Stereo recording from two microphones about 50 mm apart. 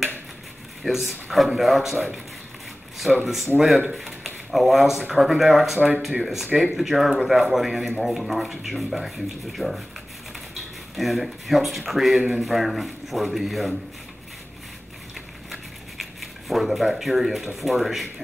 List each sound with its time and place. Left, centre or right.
0.8 s speech: centre
3.1 s speech: centre
3.5 s speech: centre
5.8 s speech: right
6.2 s speech: centre
15.5 s a sound: centre
17.6 s speech: centre